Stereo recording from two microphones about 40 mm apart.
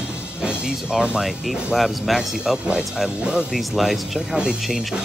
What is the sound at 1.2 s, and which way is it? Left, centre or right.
Speech, centre.